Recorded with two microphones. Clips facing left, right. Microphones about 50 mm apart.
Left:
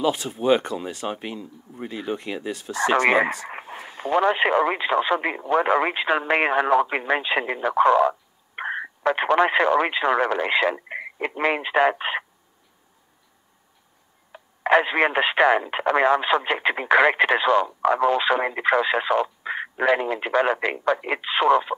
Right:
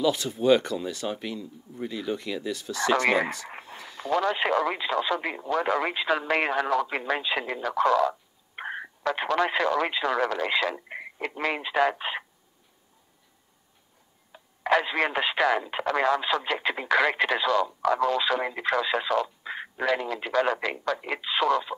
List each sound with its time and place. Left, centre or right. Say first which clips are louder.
0.0 s speech: left 1 dB; left
14.3 s speech: left 5 dB; left